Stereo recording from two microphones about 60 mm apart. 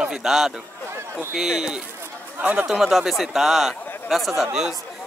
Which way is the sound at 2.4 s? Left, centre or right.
Right.